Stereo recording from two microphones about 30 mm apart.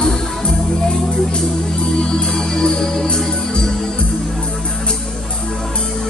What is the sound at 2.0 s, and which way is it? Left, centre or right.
Music, left.